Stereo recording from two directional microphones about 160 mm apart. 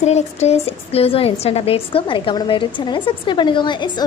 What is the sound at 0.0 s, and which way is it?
A woman's voice, 45° left (ahead or behind).